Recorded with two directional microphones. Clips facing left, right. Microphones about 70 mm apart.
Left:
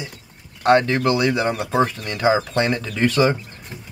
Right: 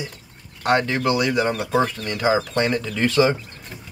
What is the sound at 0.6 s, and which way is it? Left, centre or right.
Speech, left.